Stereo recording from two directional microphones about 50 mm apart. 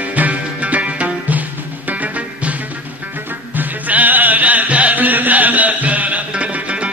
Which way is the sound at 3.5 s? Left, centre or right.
Right.